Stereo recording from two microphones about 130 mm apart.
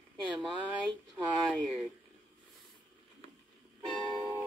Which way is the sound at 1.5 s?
Centre (ahead or behind).